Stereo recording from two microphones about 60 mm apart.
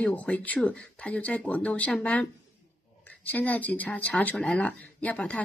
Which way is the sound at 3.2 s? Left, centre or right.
Left.